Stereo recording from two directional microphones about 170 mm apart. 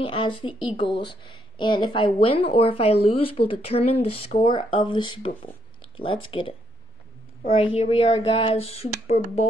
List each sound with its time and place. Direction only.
0.0 s speech: 30° left (ahead or behind)
7.5 s speech: 35° left (ahead or behind)